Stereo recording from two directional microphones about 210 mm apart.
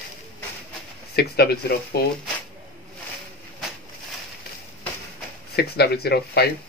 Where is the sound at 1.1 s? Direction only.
50° left (ahead or behind).